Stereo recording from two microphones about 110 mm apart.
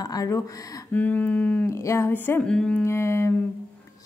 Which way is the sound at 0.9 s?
15° left (ahead or behind).